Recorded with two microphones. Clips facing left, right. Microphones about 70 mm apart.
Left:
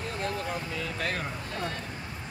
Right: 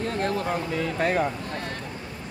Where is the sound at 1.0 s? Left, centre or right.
Right.